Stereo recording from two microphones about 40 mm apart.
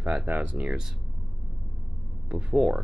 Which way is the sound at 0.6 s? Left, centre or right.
Right.